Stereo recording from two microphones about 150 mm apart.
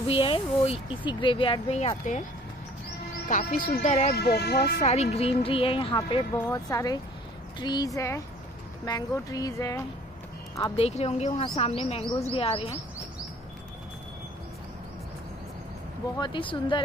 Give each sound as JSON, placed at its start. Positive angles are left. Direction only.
{"t": 0.0, "sound": "speech", "side_deg": 40}
{"t": 3.3, "sound": "speech", "side_deg": 60}
{"t": 4.1, "sound": "speech", "side_deg": 90}
{"t": 4.8, "sound": "speech", "side_deg": 45}
{"t": 10.8, "sound": "a woman's voice", "side_deg": 45}
{"t": 16.2, "sound": "speech", "side_deg": 35}